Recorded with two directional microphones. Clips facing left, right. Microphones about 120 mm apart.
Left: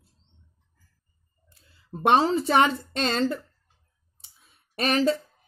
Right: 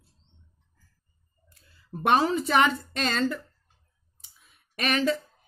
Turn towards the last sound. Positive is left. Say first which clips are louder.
# left 3 dB
turn(degrees=35)  # may be behind; listen again after turning